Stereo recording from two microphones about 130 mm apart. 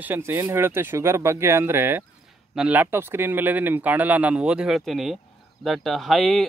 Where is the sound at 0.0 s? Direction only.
15° right (ahead or behind).